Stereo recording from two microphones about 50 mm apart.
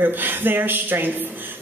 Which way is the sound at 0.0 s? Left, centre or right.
Right.